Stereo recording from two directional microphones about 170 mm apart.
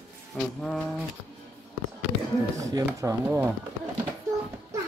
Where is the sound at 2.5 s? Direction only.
20° right (ahead or behind).